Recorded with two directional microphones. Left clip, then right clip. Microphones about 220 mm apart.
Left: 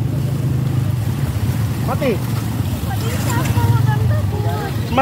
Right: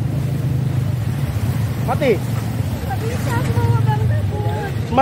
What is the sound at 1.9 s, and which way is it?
Vehicle, centre (ahead or behind).